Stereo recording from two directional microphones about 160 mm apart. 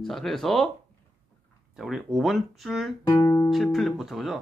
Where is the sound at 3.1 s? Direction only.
20° left (ahead or behind).